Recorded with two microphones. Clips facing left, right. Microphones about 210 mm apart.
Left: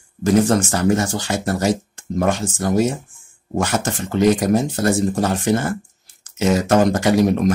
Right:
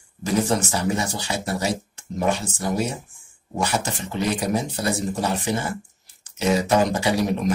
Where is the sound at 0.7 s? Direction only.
50° left (ahead or behind).